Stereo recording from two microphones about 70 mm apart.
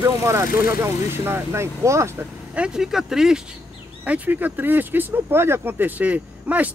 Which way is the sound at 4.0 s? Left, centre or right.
Right.